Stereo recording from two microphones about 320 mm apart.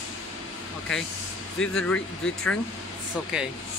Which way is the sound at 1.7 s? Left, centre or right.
Centre.